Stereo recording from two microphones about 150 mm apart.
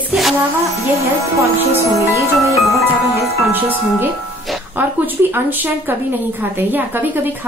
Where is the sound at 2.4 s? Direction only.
20° right (ahead or behind).